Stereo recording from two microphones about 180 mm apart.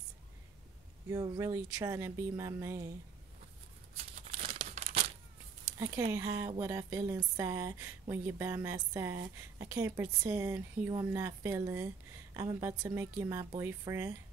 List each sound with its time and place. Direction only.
1.1 s speech: 20° right (ahead or behind)
3.9 s tearing: 35° right (ahead or behind)
5.8 s speech: 15° right (ahead or behind)